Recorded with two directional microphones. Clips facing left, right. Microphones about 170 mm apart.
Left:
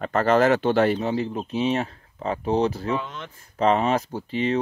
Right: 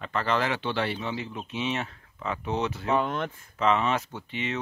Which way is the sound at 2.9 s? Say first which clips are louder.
Right 3 dB; 55° right (ahead or behind).